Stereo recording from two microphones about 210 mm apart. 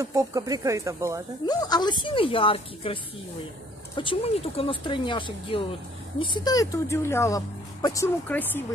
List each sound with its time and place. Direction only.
0.0 s speech: 15° right (ahead or behind)
1.4 s speech: 20° left (ahead or behind)